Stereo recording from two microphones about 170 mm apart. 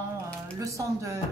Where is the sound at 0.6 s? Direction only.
20° right (ahead or behind).